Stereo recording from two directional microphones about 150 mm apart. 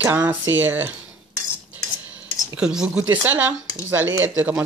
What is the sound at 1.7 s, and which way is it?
Cutlery, 10° right (ahead or behind).